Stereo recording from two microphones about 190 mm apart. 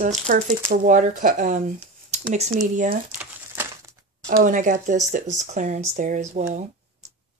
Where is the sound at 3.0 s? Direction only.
10° right (ahead or behind).